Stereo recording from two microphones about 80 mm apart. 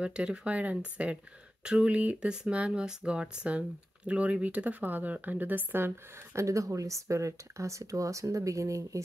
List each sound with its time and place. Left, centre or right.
0.0 s speech: centre
6.4 s speech: right